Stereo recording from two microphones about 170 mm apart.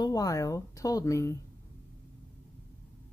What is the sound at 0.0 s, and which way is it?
Speech, 20° left (ahead or behind).